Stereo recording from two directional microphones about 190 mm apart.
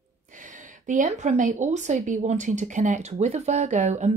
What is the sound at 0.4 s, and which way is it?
A woman's voice, 40° right (ahead or behind).